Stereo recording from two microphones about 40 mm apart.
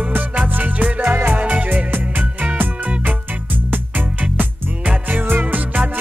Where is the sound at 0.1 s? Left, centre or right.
Right.